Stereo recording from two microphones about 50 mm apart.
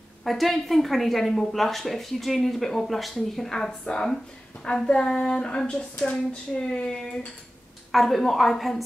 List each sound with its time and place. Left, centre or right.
0.2 s speech: centre
7.9 s speech: centre